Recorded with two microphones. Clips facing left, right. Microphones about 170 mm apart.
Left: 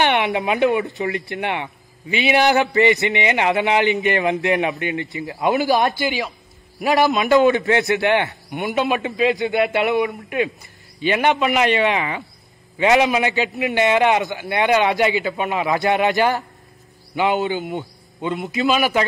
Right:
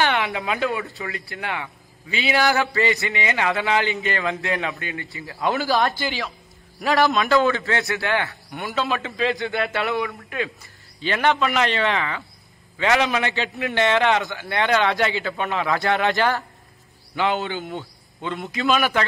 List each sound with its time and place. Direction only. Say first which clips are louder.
0.0 s a man's voice: left 4 dB; 20° left (ahead or behind)
18.4 s a man's voice: left 2 dB; 5° left (ahead or behind)